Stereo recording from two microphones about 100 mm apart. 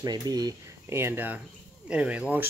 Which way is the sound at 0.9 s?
25° right (ahead or behind).